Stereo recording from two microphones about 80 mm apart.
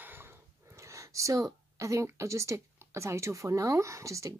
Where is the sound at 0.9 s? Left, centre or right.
Right.